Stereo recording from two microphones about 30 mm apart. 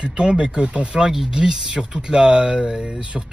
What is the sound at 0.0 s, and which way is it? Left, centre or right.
Speech, right.